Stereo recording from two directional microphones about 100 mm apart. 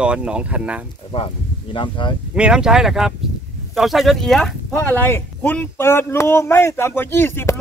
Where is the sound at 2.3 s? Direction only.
10° right (ahead or behind).